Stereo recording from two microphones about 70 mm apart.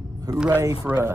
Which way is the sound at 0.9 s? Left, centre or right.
Centre.